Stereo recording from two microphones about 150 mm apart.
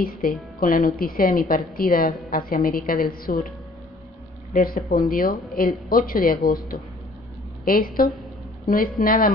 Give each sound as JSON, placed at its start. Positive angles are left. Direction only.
{"t": 0.2, "sound": "speech", "side_deg": 70}
{"t": 4.6, "sound": "a woman's voice", "side_deg": 80}